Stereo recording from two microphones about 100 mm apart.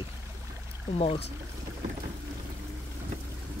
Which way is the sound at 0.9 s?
90° left.